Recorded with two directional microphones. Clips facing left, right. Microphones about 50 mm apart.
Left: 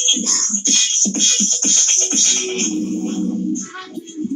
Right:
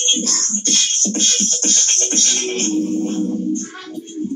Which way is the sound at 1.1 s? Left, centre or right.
Left.